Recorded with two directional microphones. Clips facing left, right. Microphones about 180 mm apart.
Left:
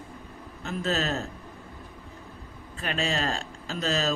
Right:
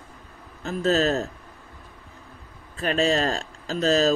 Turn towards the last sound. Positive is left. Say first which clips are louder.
# right 7 dB
turn(degrees=-40)  # may be behind; listen again after turning